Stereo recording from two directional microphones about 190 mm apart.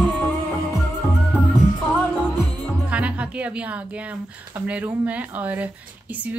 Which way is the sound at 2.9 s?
5° right (ahead or behind).